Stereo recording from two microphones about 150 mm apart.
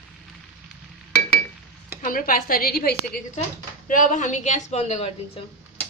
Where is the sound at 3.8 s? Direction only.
60° left (ahead or behind); by 5.4 s 45° left (ahead or behind).